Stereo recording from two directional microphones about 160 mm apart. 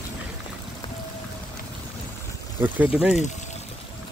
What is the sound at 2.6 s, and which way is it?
Speech, 10° right (ahead or behind).